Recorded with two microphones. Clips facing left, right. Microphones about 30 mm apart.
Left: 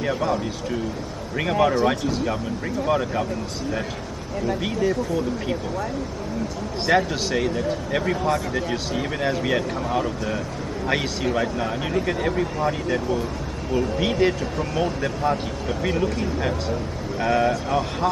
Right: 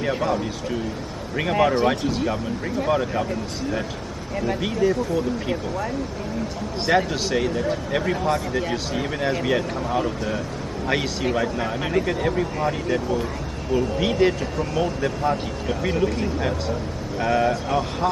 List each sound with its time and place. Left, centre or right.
0.2 s a man's voice: centre
4.6 s speech: centre
6.9 s speech: centre